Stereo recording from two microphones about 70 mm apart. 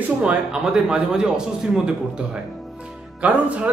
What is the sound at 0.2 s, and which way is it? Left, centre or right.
Speech, centre.